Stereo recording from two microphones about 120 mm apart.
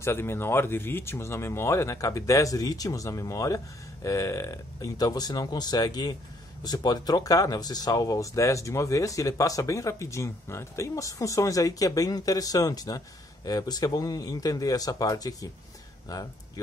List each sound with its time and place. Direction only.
0.0 s speech: 20° left (ahead or behind)